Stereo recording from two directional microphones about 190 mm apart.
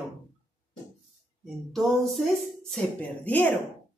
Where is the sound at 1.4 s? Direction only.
Centre (ahead or behind).